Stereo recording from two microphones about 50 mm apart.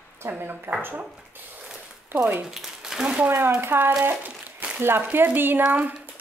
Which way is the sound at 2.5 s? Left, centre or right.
Centre.